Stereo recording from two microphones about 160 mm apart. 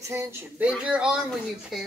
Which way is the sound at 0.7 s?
5° right (ahead or behind).